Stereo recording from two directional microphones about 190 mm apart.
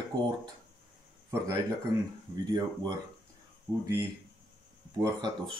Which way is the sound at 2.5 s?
20° right (ahead or behind).